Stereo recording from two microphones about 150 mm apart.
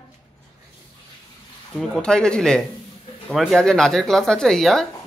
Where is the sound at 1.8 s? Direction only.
5° left (ahead or behind).